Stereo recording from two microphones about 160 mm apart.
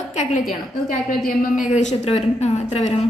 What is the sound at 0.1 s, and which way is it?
Speech, 45° left (ahead or behind).